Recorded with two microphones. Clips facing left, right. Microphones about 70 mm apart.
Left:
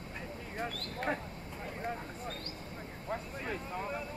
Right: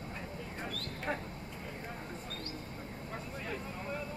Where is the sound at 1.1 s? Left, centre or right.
Centre.